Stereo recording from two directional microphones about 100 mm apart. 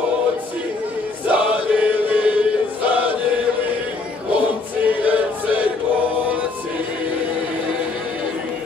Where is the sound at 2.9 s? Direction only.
15° right (ahead or behind).